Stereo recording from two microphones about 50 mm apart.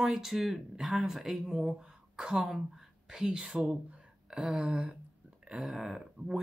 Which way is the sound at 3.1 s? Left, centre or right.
Centre.